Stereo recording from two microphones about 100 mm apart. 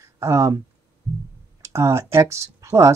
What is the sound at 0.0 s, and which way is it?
Speech, 35° right (ahead or behind).